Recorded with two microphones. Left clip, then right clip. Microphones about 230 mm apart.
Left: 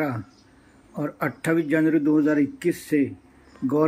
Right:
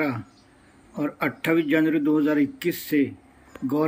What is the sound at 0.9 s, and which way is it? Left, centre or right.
Speech, centre.